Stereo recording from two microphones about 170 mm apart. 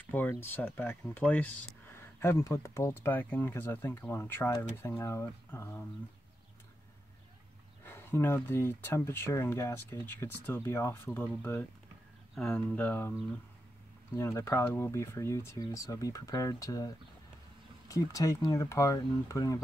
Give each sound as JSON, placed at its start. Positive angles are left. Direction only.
{"t": 0.1, "sound": "speech", "side_deg": 10}
{"t": 7.8, "sound": "speech", "side_deg": 15}
{"t": 14.1, "sound": "speech", "side_deg": 15}